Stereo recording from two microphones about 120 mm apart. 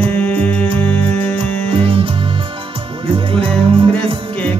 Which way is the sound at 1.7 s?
50° right (ahead or behind).